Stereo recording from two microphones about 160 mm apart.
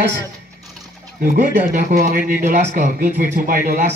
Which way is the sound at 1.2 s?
60° right (ahead or behind).